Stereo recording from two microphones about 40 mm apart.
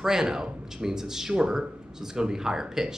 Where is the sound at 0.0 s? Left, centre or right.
Centre.